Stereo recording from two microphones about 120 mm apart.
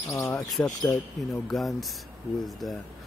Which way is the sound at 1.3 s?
Centre (ahead or behind).